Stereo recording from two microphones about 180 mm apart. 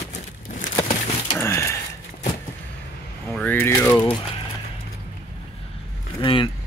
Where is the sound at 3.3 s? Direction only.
10° left (ahead or behind).